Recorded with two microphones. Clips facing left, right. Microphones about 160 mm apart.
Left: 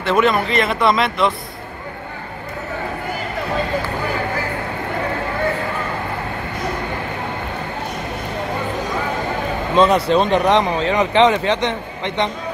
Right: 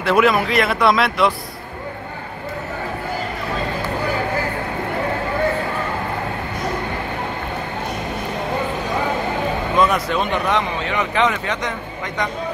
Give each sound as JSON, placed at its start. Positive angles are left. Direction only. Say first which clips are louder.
{"t": 0.0, "sound": "speech", "louder": "even", "side_deg": -5}
{"t": 9.8, "sound": "a man's voice", "louder": "left 5 dB", "side_deg": 30}